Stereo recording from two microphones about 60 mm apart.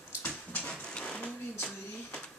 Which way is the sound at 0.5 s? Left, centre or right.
Centre.